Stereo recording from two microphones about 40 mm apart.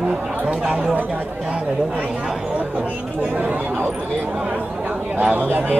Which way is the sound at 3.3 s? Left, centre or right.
Right.